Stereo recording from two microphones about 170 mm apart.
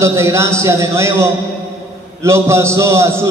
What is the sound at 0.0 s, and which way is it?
A man's voice, 15° right (ahead or behind).